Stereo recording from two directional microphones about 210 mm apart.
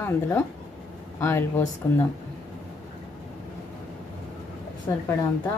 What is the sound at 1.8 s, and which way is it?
Speech, 10° left (ahead or behind).